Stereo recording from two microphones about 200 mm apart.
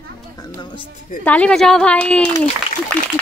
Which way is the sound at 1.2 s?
5° left (ahead or behind).